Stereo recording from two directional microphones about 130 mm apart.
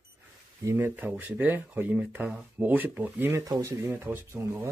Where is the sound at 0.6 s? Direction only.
20° right (ahead or behind).